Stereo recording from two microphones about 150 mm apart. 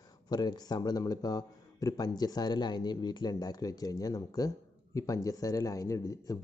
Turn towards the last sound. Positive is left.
turn(degrees=20)  # may be behind; listen again after turning